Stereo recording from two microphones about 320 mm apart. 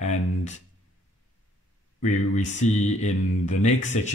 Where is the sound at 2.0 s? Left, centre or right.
Left.